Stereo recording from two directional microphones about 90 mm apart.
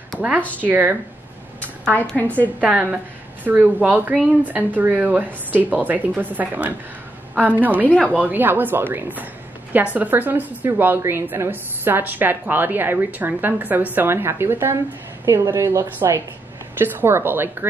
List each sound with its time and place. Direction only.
0.4 s speech: 15° left (ahead or behind)
0.7 s a woman's voice: 20° right (ahead or behind)
2.6 s a woman's voice: 15° right (ahead or behind)
7.9 s speech: 10° left (ahead or behind)
8.2 s a woman's voice: 20° right (ahead or behind)